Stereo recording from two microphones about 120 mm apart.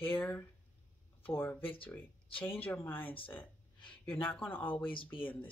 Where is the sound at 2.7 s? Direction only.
15° left (ahead or behind).